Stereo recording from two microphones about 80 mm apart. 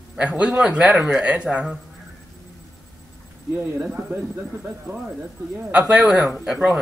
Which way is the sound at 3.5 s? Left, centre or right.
Right.